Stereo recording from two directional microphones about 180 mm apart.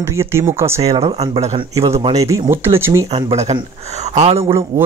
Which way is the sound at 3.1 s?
30° right (ahead or behind).